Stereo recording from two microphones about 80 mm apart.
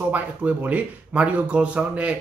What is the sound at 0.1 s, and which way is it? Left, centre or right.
Speech, right.